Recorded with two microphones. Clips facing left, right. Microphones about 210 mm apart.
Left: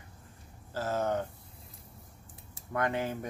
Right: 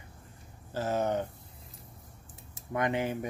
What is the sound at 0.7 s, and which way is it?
Speech, 20° right (ahead or behind).